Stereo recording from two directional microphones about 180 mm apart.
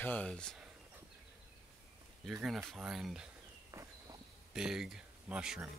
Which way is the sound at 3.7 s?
15° right (ahead or behind).